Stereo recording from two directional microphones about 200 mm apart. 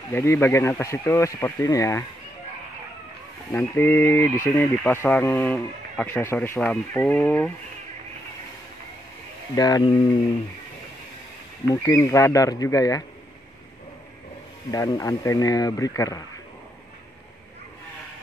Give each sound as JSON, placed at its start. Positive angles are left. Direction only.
{"t": 0.1, "sound": "speech", "side_deg": 10}
{"t": 3.5, "sound": "speech", "side_deg": 10}
{"t": 9.6, "sound": "speech", "side_deg": 20}
{"t": 11.7, "sound": "speech", "side_deg": 15}
{"t": 14.7, "sound": "speech", "side_deg": 20}